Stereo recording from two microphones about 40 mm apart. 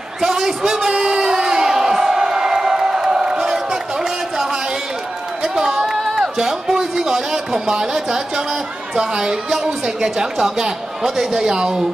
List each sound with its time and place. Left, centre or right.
0.2 s whoop: centre
5.4 s a sound: centre
8.9 s a woman's voice: centre